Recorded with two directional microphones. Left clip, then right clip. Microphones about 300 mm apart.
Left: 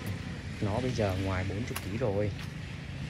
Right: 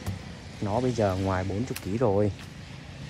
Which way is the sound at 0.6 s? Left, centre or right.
Centre.